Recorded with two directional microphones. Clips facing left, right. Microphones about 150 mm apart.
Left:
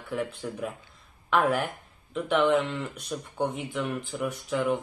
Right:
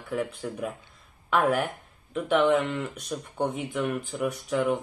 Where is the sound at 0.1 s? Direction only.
Centre (ahead or behind).